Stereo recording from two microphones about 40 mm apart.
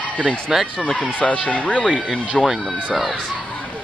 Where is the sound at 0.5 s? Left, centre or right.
Centre.